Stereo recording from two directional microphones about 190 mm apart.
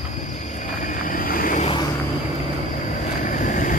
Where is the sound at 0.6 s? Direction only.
40° left (ahead or behind).